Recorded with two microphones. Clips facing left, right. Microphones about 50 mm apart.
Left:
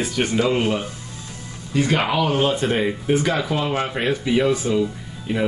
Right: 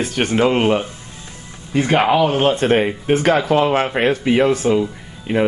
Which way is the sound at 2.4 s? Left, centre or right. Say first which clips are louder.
Right 5 dB; right.